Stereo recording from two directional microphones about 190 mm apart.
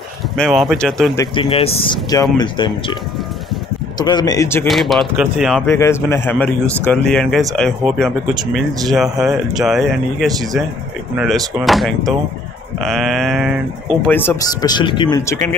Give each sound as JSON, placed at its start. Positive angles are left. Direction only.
{"t": 0.4, "sound": "a man's voice", "side_deg": 0}
{"t": 1.3, "sound": "speech", "side_deg": 25}
{"t": 4.0, "sound": "speech", "side_deg": 20}
{"t": 4.6, "sound": "a man's voice", "side_deg": 0}
{"t": 5.7, "sound": "a man's voice", "side_deg": 15}
{"t": 14.0, "sound": "speech", "side_deg": 10}